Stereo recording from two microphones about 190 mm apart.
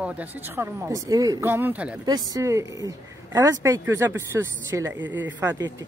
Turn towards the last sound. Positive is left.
turn(degrees=-10)  # may be behind; listen again after turning